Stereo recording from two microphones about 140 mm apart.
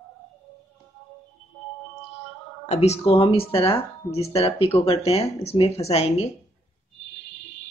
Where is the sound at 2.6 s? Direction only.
50° left (ahead or behind).